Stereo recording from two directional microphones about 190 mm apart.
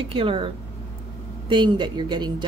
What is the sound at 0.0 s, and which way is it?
Speech, 25° right (ahead or behind).